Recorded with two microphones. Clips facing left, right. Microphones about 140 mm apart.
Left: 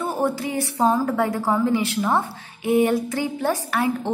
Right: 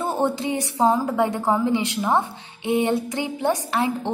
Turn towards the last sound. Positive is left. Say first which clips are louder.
# even
turn(degrees=-20)  # may be behind; listen again after turning